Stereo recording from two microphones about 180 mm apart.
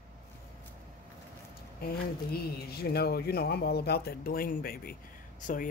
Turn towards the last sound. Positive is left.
turn(degrees=50)  # may be behind; listen again after turning